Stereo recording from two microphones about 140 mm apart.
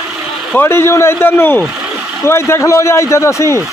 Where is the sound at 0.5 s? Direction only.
20° left (ahead or behind).